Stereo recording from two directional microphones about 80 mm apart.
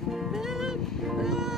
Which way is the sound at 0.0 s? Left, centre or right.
Centre.